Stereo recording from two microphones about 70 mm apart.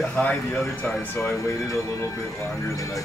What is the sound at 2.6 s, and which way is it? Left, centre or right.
Speech, left.